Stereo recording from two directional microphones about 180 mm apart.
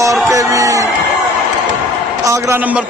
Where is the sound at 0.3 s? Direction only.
20° right (ahead or behind).